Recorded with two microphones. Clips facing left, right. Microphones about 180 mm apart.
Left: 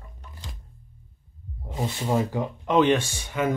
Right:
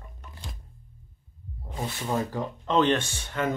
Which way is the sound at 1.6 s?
25° left (ahead or behind).